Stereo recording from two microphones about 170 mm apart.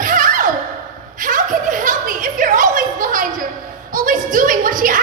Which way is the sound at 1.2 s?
50° right (ahead or behind).